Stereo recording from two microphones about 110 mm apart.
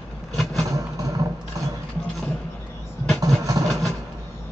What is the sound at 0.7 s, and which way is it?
Music, 30° right (ahead or behind).